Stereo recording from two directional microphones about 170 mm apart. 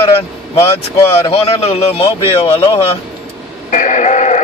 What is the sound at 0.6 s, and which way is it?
Speech, 15° left (ahead or behind).